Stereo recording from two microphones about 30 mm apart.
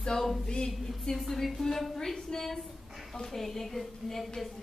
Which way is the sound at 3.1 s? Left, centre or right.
Centre.